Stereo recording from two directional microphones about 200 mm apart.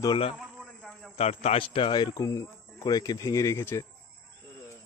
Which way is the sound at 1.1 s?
30° left (ahead or behind).